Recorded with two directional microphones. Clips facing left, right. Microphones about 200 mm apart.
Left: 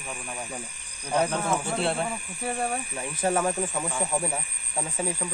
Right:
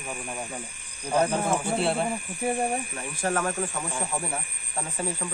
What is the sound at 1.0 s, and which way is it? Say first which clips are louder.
Speech: right 1 dB; 10° right (ahead or behind).